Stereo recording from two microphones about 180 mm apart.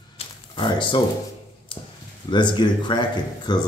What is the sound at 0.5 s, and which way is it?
Speech, 25° left (ahead or behind).